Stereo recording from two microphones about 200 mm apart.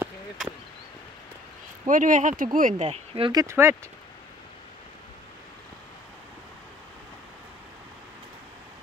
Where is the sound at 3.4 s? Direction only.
10° right (ahead or behind).